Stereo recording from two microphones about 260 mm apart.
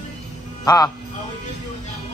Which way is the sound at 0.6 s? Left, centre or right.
Centre.